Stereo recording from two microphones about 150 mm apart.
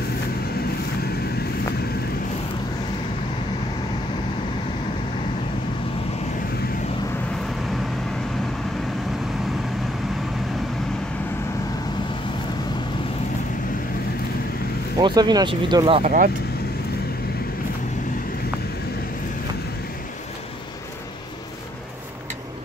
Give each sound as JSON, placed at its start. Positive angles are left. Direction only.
{"t": 15.0, "sound": "speech", "side_deg": -30}
{"t": 16.0, "sound": "speech", "side_deg": -60}